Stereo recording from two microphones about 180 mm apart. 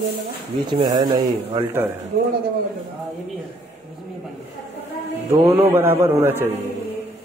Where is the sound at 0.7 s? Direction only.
25° right (ahead or behind).